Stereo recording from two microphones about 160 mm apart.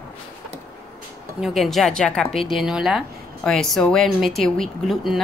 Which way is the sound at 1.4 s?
Centre (ahead or behind).